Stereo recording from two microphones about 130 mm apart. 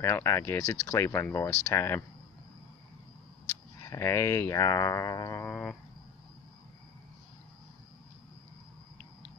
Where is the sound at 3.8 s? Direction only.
20° left (ahead or behind).